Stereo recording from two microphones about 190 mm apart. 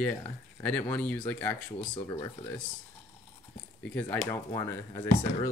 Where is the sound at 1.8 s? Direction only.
20° left (ahead or behind).